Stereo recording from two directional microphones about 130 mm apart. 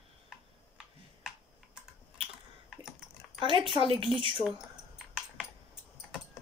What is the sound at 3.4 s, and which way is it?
Speech, 40° right (ahead or behind).